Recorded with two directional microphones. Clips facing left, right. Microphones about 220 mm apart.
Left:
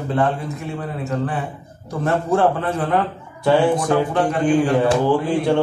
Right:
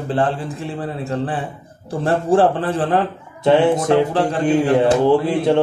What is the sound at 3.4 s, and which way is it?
A man's voice, 20° right (ahead or behind).